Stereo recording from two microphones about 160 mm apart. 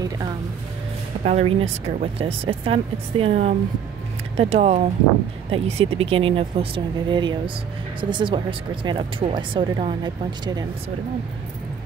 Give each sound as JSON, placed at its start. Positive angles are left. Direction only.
{"t": 1.2, "sound": "speech", "side_deg": -40}